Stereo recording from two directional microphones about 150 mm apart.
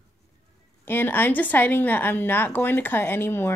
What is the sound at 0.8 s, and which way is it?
Speech, 15° left (ahead or behind).